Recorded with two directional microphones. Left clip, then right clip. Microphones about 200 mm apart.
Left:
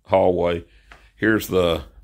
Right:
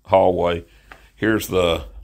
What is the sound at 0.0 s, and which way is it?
Speech, 30° left (ahead or behind).